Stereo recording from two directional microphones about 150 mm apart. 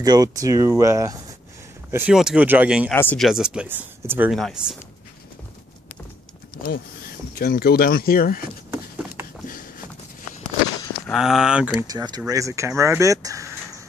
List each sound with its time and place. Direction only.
0.0 s speech: 25° right (ahead or behind)
2.9 s speech: 10° left (ahead or behind)
3.2 s speech: 5° right (ahead or behind)
4.3 s speech: centre (ahead or behind)
6.5 s speech: 85° left
8.6 s patter: 15° right (ahead or behind)
9.5 s a sound: 70° left (ahead or behind)
11.1 s speech: 5° right (ahead or behind)
11.9 s speech: 25° right (ahead or behind)